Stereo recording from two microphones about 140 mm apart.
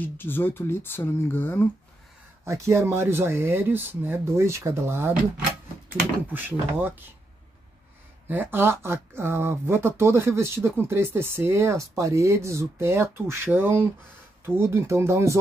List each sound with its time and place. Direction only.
0.0 s speech: 15° left (ahead or behind)
2.4 s speech: 20° right (ahead or behind)
8.3 s speech: 15° right (ahead or behind)